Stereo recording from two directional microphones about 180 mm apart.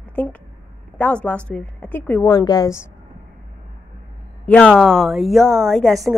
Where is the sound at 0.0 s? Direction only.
10° left (ahead or behind).